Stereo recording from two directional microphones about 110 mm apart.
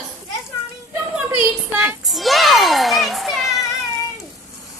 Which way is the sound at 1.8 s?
5° right (ahead or behind).